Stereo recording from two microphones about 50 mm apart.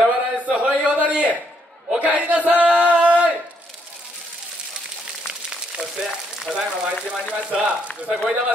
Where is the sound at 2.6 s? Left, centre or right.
Right.